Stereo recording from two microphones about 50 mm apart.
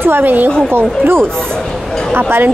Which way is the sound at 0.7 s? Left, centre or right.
Right.